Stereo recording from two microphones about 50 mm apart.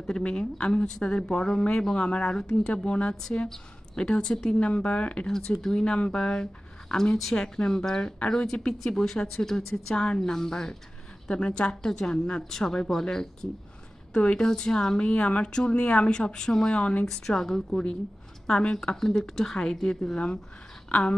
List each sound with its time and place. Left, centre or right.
0.0 s speech: centre
3.4 s speech: centre
5.2 s speech: centre
18.5 s speech: centre
20.9 s speech: left